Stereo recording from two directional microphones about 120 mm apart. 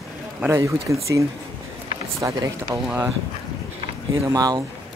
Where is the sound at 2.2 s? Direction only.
30° right (ahead or behind).